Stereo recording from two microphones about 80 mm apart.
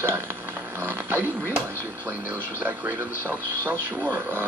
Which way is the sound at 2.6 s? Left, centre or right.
Right.